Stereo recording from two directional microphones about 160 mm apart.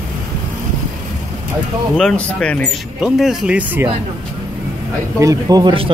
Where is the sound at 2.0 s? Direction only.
5° left (ahead or behind); by 3.9 s 10° right (ahead or behind).